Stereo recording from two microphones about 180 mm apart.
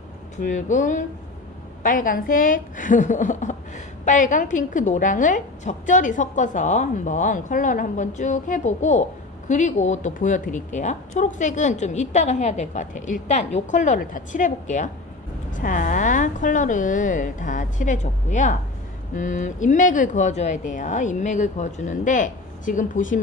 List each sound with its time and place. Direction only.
0.4 s a woman's voice: 45° left (ahead or behind)